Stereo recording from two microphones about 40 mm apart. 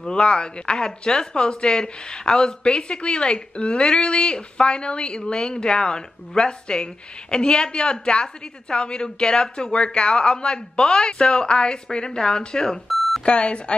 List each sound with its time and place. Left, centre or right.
0.0 s speech: left